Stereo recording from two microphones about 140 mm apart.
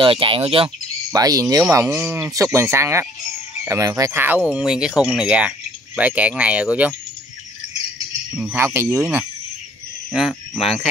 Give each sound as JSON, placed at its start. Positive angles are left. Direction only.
{"t": 0.0, "sound": "speech", "side_deg": -40}
{"t": 1.1, "sound": "speech", "side_deg": -25}
{"t": 4.5, "sound": "speech", "side_deg": -5}
{"t": 8.3, "sound": "speech", "side_deg": -10}